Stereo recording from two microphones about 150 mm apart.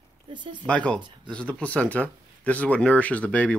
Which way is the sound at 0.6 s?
5° left (ahead or behind).